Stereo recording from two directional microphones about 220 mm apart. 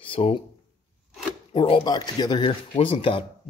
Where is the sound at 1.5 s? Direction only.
25° left (ahead or behind).